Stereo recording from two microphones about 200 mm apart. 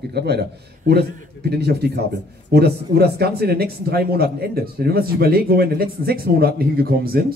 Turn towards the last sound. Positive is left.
turn(degrees=-50)  # may be behind; listen again after turning